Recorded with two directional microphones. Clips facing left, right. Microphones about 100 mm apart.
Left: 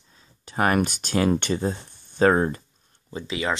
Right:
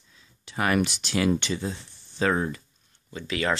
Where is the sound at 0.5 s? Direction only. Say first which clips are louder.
Left 3 dB; 45° left (ahead or behind).